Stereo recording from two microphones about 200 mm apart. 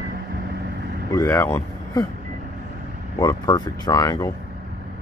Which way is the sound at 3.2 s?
20° left (ahead or behind).